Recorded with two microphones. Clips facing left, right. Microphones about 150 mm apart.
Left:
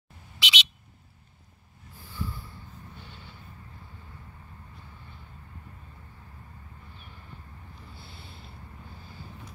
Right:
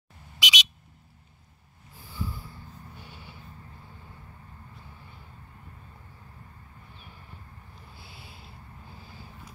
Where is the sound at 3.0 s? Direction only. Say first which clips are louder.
Right 1 dB; 10° right (ahead or behind).